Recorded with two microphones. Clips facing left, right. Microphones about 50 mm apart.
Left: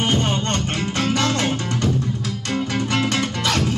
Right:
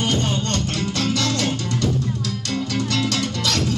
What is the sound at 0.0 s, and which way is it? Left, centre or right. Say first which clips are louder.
Music: left 2 dB; left.